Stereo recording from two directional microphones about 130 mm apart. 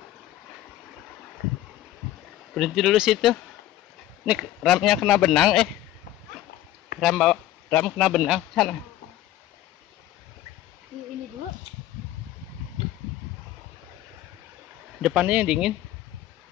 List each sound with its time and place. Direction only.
2.5 s a man's voice: centre (ahead or behind)
4.6 s a man's voice: centre (ahead or behind)
7.0 s a man's voice: centre (ahead or behind)
15.0 s speech: 5° right (ahead or behind)